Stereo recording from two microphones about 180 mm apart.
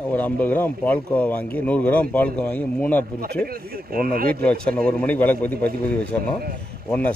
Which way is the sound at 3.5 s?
55° right (ahead or behind).